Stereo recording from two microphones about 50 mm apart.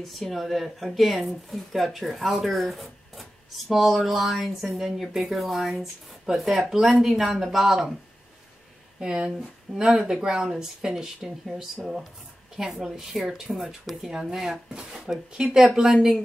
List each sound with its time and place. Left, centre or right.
0.0 s speech: centre
9.0 s speech: centre